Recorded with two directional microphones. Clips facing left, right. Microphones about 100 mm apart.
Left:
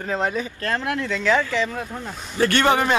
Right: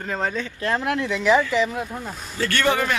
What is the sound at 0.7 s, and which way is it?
Speech, 15° right (ahead or behind).